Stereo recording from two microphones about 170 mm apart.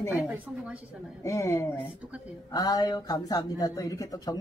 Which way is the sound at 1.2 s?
15° left (ahead or behind).